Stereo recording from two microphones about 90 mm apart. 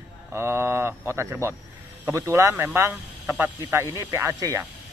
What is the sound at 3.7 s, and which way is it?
Speech, 30° right (ahead or behind).